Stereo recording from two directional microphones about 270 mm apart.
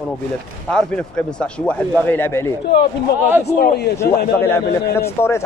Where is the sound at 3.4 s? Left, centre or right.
Left.